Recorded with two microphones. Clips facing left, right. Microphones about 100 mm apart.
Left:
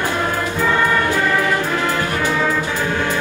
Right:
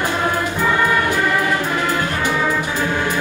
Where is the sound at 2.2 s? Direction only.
15° right (ahead or behind).